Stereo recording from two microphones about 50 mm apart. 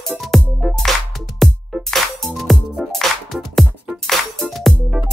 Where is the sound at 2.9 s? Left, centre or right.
Centre.